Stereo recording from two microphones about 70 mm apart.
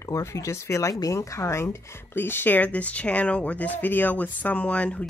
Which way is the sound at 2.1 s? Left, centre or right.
Left.